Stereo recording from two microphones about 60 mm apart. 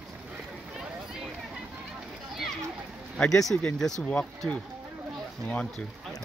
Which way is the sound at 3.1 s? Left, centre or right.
Centre.